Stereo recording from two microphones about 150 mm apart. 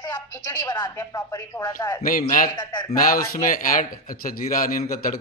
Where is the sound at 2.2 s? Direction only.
60° left (ahead or behind).